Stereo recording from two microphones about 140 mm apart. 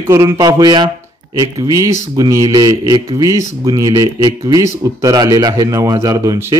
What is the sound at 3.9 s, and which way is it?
Speech, 35° right (ahead or behind).